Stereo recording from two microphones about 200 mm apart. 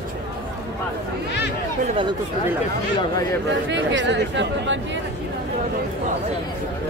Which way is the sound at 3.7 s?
65° right (ahead or behind).